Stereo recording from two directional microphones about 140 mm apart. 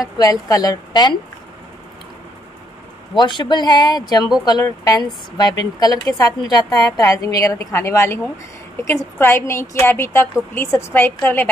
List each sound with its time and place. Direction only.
0.0 s a woman's voice: 25° left (ahead or behind)
3.2 s a woman's voice: 35° left (ahead or behind); by 11.4 s 15° left (ahead or behind)